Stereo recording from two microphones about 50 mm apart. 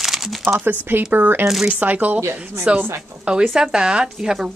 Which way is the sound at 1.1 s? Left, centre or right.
Right.